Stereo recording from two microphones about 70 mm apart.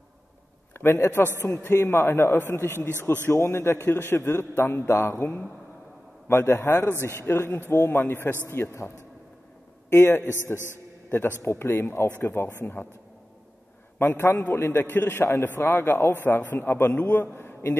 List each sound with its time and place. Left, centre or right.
0.9 s a man's voice: left
13.9 s a man's voice: left